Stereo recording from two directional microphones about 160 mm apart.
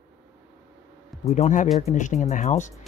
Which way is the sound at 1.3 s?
45° left (ahead or behind).